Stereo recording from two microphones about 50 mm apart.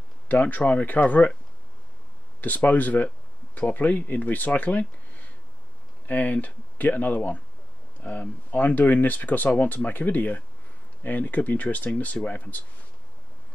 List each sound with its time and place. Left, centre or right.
0.3 s speech: left
2.4 s speech: left